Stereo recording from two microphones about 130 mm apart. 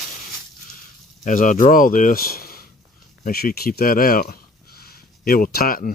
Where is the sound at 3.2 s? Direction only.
90° left.